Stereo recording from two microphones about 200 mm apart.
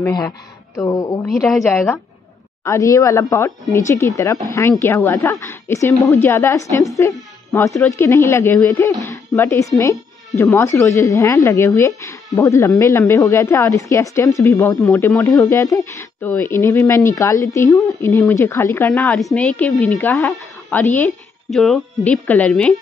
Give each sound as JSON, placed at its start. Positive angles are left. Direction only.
{"t": 0.0, "sound": "speech", "side_deg": 20}
{"t": 1.3, "sound": "a woman's voice", "side_deg": 0}
{"t": 1.7, "sound": "speech", "side_deg": 10}